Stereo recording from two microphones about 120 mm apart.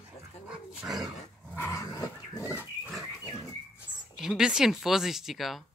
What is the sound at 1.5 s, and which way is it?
Dog, 20° left (ahead or behind).